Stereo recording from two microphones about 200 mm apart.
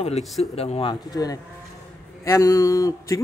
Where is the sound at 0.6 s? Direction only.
30° left (ahead or behind).